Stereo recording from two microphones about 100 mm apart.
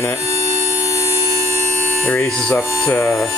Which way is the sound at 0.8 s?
30° left (ahead or behind).